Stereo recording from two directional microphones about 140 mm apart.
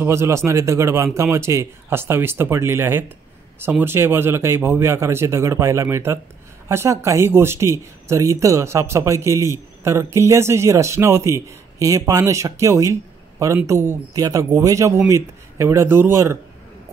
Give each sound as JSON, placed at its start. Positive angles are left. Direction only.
{"t": 0.0, "sound": "speech", "side_deg": -20}